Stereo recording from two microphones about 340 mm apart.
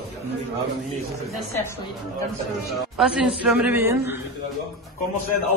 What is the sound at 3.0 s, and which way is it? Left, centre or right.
A man's voice, centre.